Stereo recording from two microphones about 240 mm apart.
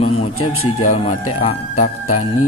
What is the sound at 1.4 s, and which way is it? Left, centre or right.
Speech, left.